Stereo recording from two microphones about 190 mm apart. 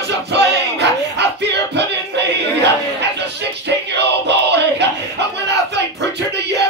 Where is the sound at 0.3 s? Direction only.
65° right (ahead or behind).